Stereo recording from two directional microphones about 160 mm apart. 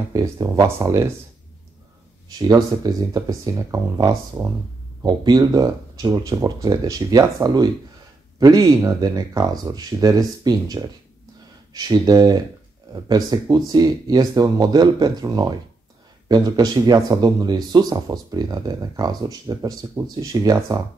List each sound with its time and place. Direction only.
0.1 s speech: 20° right (ahead or behind)
2.3 s speech: 25° right (ahead or behind)